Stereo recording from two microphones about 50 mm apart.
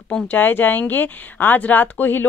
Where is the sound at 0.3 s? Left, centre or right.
Left.